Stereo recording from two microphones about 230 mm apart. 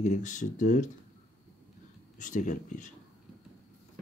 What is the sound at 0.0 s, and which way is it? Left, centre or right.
Speech, left.